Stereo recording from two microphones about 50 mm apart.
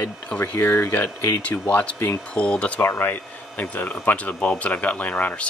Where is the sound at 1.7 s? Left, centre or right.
Left.